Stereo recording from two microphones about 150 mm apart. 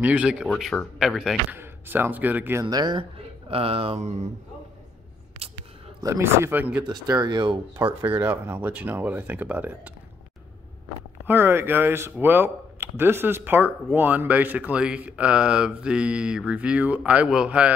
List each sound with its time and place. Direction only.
0.0 s speech: 10° right (ahead or behind)
0.5 s speech: 5° left (ahead or behind); by 2.6 s 10° right (ahead or behind)
2.6 s speech: 30° right (ahead or behind)
6.0 s speech: 20° right (ahead or behind)
6.9 s speech: 25° right (ahead or behind)
8.0 s speech: 15° right (ahead or behind)
11.2 s speech: 15° right (ahead or behind)